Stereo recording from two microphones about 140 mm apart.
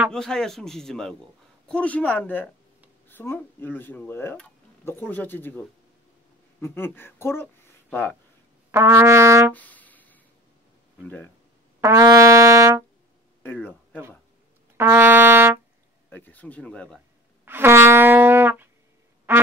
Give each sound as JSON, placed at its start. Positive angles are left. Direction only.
{"t": 0.1, "sound": "speech", "side_deg": 5}
{"t": 8.7, "sound": "music", "side_deg": -20}
{"t": 9.5, "sound": "music", "side_deg": 10}
{"t": 11.8, "sound": "brass instrument", "side_deg": -20}
{"t": 14.8, "sound": "trumpet", "side_deg": -15}
{"t": 16.1, "sound": "speech", "side_deg": 15}
{"t": 17.5, "sound": "music", "side_deg": -15}